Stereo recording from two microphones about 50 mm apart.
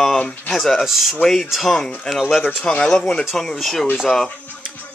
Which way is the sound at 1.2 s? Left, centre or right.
Centre.